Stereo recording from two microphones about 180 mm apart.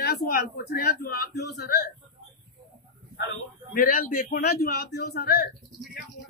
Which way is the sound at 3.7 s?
55° left (ahead or behind).